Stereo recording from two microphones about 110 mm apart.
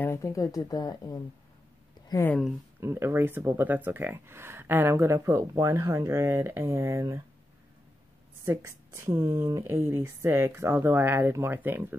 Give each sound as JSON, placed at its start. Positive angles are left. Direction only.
{"t": 0.0, "sound": "speech", "side_deg": 25}
{"t": 2.8, "sound": "speech", "side_deg": -25}
{"t": 8.5, "sound": "speech", "side_deg": -25}